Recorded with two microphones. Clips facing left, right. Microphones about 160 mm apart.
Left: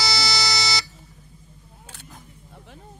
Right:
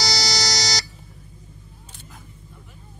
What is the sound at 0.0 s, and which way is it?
Buzzer, 40° right (ahead or behind).